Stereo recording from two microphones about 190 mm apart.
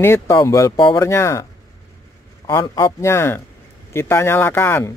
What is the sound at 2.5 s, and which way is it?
Speech, 20° left (ahead or behind).